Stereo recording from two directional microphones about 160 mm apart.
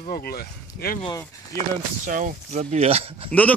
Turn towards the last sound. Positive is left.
turn(degrees=10)  # may be behind; listen again after turning